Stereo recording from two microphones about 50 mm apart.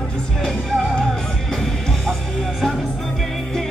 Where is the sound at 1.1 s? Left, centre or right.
Centre.